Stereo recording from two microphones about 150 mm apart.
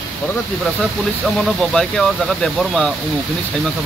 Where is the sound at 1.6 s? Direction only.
5° left (ahead or behind).